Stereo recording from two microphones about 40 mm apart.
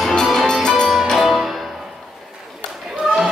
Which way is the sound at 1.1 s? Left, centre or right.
Centre.